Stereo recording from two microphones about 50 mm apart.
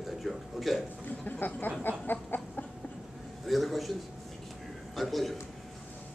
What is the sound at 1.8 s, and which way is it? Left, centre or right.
Chicken, left.